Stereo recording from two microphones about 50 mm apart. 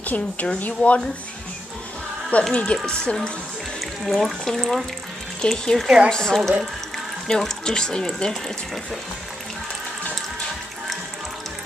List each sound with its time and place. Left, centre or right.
0.0 s a woman's voice: left
2.5 s speech: left
4.0 s speech: centre